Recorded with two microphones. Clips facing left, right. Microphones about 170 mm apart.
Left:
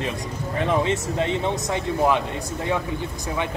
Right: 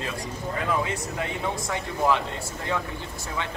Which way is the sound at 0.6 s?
25° left (ahead or behind).